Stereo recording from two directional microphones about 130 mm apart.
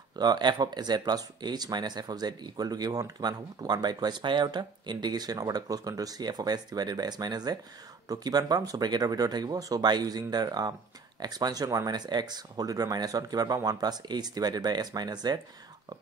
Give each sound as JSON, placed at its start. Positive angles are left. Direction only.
{"t": 0.1, "sound": "speech", "side_deg": -35}